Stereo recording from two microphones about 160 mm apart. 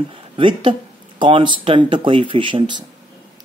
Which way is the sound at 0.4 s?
30° right (ahead or behind).